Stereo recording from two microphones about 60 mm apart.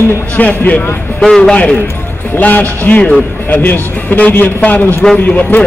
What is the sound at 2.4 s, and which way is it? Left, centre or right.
A man's voice, left.